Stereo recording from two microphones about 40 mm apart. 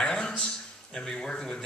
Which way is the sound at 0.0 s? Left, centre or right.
Left.